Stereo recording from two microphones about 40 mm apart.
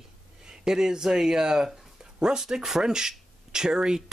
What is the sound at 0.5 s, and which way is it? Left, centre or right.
Speech, centre.